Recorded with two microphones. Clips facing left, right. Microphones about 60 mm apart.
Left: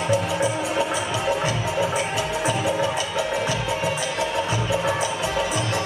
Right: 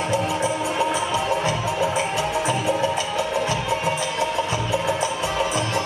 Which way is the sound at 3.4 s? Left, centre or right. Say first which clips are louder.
Right 1 dB; right.